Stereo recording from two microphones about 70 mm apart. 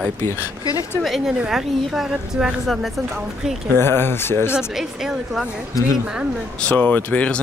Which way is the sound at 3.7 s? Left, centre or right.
Left.